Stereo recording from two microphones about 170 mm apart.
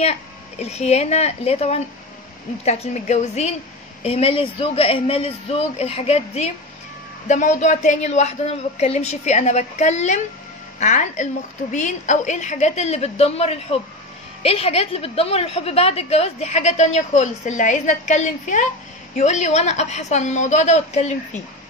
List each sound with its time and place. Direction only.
0.0 s a woman's voice: 40° left (ahead or behind)